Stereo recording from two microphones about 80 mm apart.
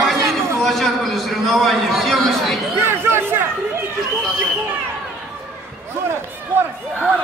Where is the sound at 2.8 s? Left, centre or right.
Right.